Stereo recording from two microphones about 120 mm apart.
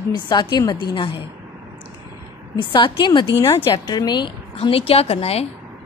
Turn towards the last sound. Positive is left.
turn(degrees=60)  # may be behind; listen again after turning